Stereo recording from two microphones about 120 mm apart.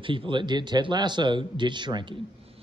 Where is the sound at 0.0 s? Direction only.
45° right (ahead or behind).